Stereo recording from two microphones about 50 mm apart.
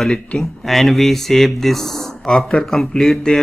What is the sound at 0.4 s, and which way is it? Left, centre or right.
Speech, centre.